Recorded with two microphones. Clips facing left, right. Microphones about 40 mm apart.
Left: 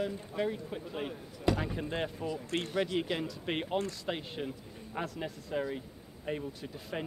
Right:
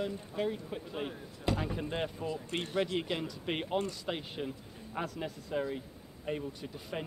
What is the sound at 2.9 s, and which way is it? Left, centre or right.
Speech, centre.